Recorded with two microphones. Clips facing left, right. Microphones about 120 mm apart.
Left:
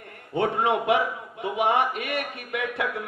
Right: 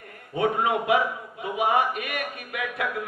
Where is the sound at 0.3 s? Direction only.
30° left (ahead or behind).